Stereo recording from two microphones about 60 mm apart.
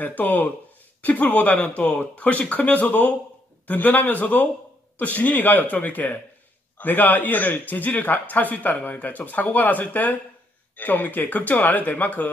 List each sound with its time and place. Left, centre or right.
0.0 s a man's voice: left